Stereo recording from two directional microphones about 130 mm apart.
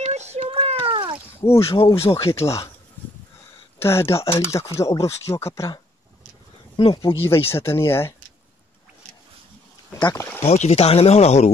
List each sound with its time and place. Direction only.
0.1 s a sound: 60° right (ahead or behind)
0.5 s a sound: 45° right (ahead or behind)
1.4 s speech: 20° left (ahead or behind)
3.0 s a sound: 15° left (ahead or behind)
3.8 s speech: 20° left (ahead or behind)
6.8 s speech: 40° left (ahead or behind)
7.2 s speech: 20° left (ahead or behind)
9.9 s speech: 30° left (ahead or behind)
10.5 s speech: 60° left (ahead or behind)